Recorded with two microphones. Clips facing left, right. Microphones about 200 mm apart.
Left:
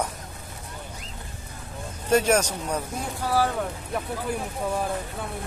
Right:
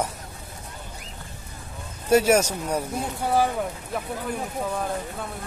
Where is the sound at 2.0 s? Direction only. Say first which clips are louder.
Right 3 dB; 10° right (ahead or behind).